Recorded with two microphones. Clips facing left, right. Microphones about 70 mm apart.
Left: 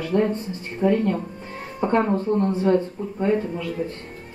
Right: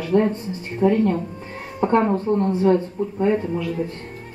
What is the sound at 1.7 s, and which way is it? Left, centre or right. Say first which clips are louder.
Speech: right 2 dB; right.